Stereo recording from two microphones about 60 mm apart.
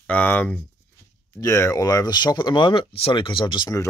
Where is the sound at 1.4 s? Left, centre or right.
Left.